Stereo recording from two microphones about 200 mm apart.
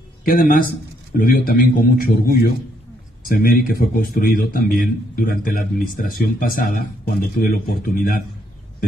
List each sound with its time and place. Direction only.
0.2 s a man's voice: 45° left (ahead or behind)